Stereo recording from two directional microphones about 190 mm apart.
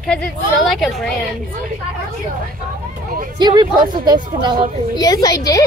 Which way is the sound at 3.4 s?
25° right (ahead or behind).